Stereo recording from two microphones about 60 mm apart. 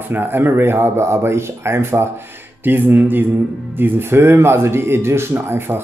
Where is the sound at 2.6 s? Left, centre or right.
Right.